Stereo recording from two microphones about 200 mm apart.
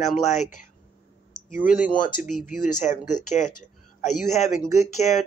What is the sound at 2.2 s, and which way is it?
Speech, 40° left (ahead or behind).